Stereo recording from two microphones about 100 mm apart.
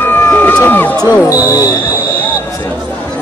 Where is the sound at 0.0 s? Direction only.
20° left (ahead or behind).